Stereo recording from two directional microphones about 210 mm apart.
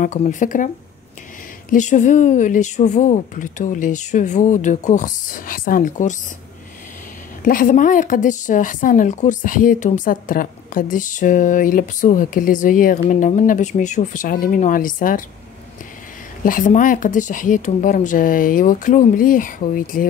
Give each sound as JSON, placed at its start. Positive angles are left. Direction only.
{"t": 0.0, "sound": "speech", "side_deg": 35}
{"t": 1.7, "sound": "speech", "side_deg": 35}
{"t": 7.4, "sound": "speech", "side_deg": 40}
{"t": 16.4, "sound": "speech", "side_deg": 40}